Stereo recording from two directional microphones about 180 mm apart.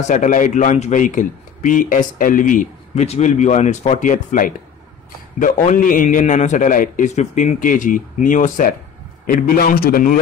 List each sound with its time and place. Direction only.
0.0 s a man's voice: 45° left (ahead or behind)